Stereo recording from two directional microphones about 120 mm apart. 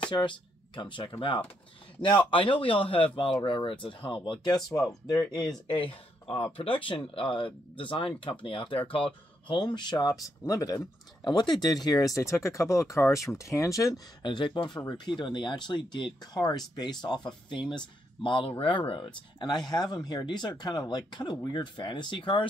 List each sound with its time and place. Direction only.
0.7 s speech: 45° left (ahead or behind)
5.7 s speech: 50° left (ahead or behind); by 14.0 s 30° left (ahead or behind)
14.2 s speech: 40° left (ahead or behind)